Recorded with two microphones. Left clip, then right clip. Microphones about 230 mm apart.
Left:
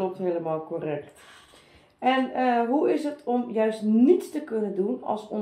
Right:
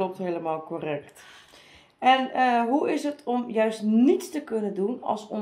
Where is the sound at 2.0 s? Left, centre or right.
Right.